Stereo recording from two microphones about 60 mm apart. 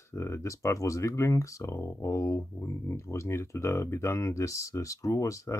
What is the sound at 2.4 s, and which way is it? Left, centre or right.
Speech, left.